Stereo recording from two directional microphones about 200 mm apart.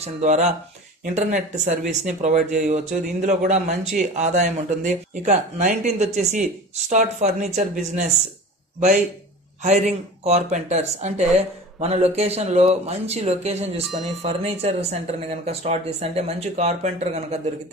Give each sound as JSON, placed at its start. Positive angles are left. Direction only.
{"t": 0.0, "sound": "a man's voice", "side_deg": -35}
{"t": 10.2, "sound": "speech", "side_deg": -35}